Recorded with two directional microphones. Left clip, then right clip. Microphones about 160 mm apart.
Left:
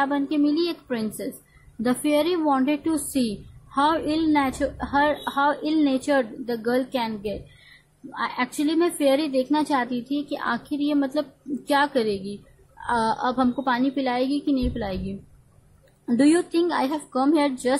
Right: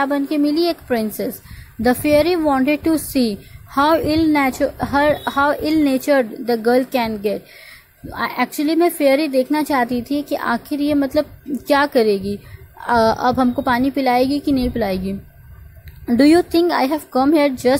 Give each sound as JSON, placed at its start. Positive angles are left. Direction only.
{"t": 0.0, "sound": "a woman's voice", "side_deg": -25}
{"t": 16.2, "sound": "a woman's voice", "side_deg": -30}